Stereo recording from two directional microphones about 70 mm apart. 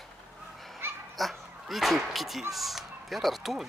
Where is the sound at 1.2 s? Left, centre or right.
Centre.